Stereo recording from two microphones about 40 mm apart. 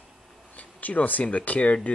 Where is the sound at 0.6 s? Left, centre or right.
Left.